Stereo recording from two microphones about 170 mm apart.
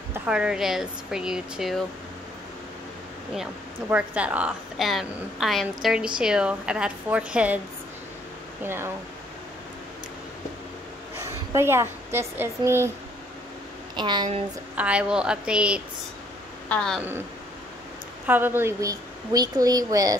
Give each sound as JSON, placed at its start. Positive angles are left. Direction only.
{"t": 0.1, "sound": "a woman's voice", "side_deg": -5}
{"t": 3.9, "sound": "a woman's voice", "side_deg": -5}
{"t": 8.6, "sound": "speech", "side_deg": -15}
{"t": 11.1, "sound": "a woman's voice", "side_deg": -15}
{"t": 13.9, "sound": "speech", "side_deg": -25}
{"t": 14.8, "sound": "a woman's voice", "side_deg": -5}
{"t": 16.6, "sound": "a woman's voice", "side_deg": 5}
{"t": 18.2, "sound": "speech", "side_deg": -10}